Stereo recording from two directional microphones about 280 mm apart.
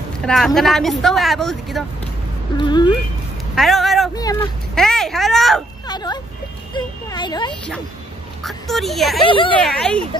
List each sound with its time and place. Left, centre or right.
0.2 s a woman's voice: centre
2.5 s speech: centre
3.5 s vehicle: centre
4.1 s vehicle: centre
4.7 s a sound: centre
5.9 s a sound: centre
8.5 s a woman's voice: centre
9.2 s speech: centre
9.6 s a woman's voice: centre